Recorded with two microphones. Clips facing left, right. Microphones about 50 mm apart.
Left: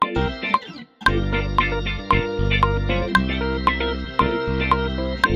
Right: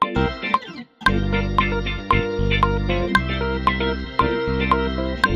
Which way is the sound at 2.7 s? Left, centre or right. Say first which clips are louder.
Right 1 dB; left.